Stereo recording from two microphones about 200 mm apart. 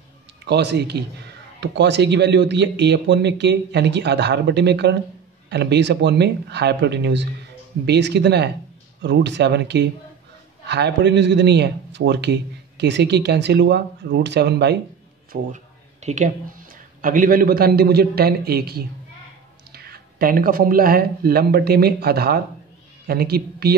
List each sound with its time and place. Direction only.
0.5 s a man's voice: 60° right (ahead or behind)
15.5 s a sound: 35° right (ahead or behind)
17.0 s a man's voice: 45° right (ahead or behind)